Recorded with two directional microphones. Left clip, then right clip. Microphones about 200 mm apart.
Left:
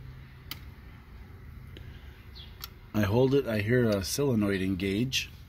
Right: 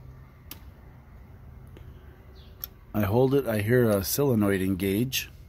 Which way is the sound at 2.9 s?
5° right (ahead or behind).